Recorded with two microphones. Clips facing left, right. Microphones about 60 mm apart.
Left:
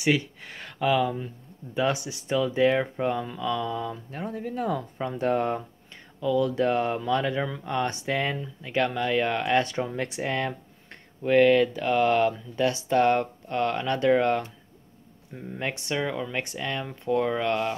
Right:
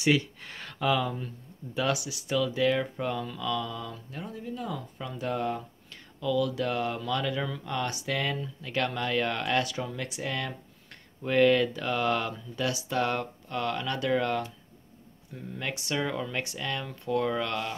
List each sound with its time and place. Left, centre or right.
0.0 s speech: centre
1.8 s speech: left
4.2 s speech: left
9.6 s speech: left
11.2 s speech: centre
15.9 s speech: centre
16.5 s speech: left